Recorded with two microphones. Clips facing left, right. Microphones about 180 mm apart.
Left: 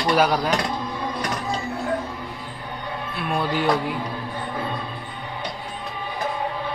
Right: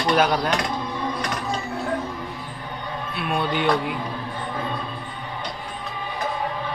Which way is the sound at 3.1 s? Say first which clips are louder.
Even; centre (ahead or behind).